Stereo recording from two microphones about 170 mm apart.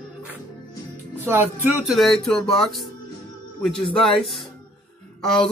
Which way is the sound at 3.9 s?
5° left (ahead or behind).